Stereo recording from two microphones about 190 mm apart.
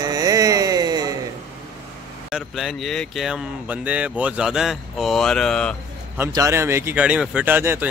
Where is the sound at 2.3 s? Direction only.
Centre (ahead or behind).